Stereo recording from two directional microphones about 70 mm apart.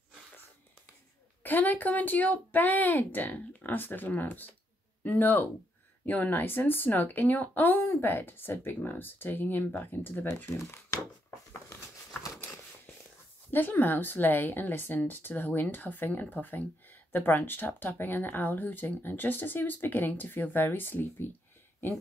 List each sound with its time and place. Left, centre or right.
1.4 s a woman's voice: left
13.5 s a woman's voice: left